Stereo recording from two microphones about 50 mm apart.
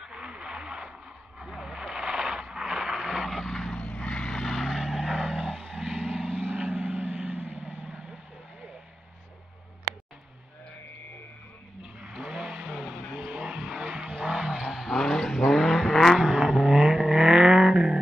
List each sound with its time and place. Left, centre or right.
0.0 s radio: centre
1.5 s vehicle: centre
4.3 s vehicle: centre
6.5 s vehicle: centre
7.8 s vehicle: centre
12.3 s vehicle: centre
14.8 s vehicle: centre